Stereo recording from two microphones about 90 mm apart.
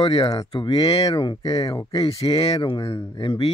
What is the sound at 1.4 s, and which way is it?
Speech, 45° left (ahead or behind).